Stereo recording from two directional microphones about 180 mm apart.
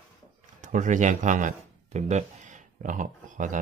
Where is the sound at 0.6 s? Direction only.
45° right (ahead or behind).